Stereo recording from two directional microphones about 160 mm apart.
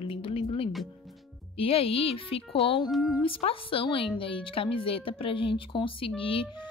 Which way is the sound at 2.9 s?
Centre (ahead or behind).